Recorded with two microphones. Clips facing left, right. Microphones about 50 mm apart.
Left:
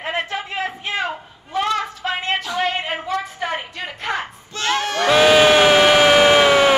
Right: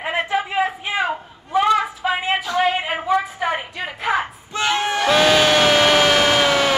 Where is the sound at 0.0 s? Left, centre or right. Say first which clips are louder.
Right 3 dB; centre.